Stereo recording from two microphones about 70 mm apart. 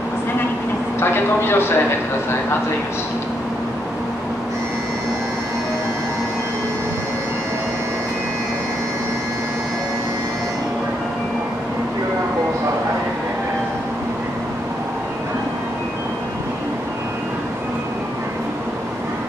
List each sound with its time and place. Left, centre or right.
0.9 s a man's voice: left